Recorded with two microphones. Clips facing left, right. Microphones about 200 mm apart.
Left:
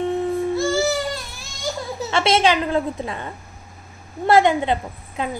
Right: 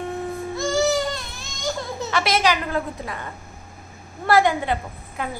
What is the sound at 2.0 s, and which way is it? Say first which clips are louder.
A woman's voice: left 4 dB; 25° left (ahead or behind).